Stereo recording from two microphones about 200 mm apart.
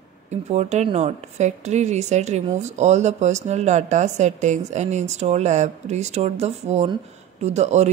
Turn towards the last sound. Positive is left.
turn(degrees=-35)  # may be behind; listen again after turning